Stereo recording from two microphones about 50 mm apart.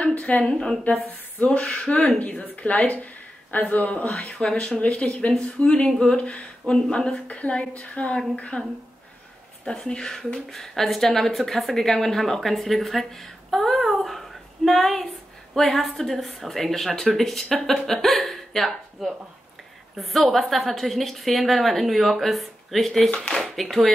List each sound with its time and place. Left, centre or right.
0.0 s a sound: left
0.4 s a woman's voice: centre
2.1 s speech: left
4.1 s a woman's voice: centre
9.7 s speech: centre